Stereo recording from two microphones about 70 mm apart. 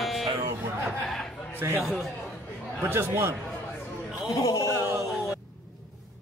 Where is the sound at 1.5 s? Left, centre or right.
Right.